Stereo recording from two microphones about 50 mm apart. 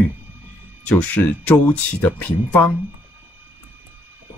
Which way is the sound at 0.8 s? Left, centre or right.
Left.